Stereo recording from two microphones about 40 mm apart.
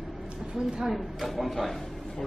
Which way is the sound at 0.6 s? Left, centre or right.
Right.